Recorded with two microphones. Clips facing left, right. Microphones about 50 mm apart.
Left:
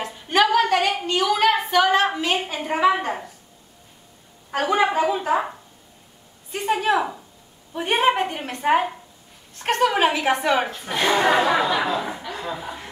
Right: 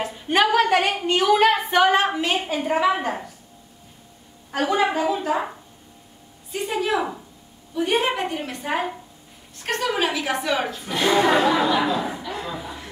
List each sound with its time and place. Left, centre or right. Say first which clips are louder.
0.0 s a woman's voice: even; centre
2.3 s a woman's voice: right 2 dB; centre
4.5 s a woman's voice: left 1 dB; centre
6.5 s a woman's voice: left 3 dB; left; by 12.0 s centre
12.6 s chuckle: left 2 dB; left